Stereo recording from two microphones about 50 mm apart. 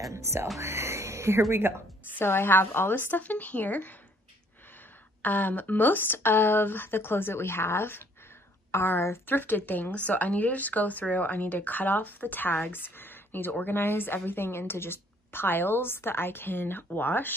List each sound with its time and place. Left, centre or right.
0.1 s speech: right
2.1 s a woman's voice: left
5.2 s speech: left
9.7 s speech: left